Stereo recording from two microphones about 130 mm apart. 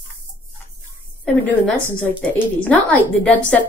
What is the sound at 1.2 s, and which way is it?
Speech, 10° left (ahead or behind).